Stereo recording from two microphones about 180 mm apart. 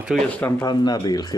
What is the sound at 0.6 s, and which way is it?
Speech, 25° left (ahead or behind).